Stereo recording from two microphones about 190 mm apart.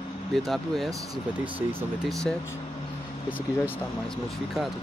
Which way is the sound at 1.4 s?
30° right (ahead or behind).